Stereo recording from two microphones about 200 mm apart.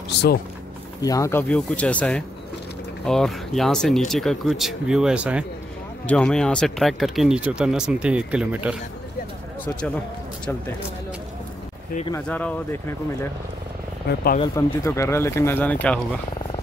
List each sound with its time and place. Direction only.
0.1 s speech: 55° left (ahead or behind)
1.0 s speech: 15° left (ahead or behind); by 5.4 s 5° right (ahead or behind)
6.0 s speech: 5° left (ahead or behind)
12.1 s speech: 10° left (ahead or behind)
14.0 s speech: 50° left (ahead or behind)
14.4 s speech: 15° left (ahead or behind)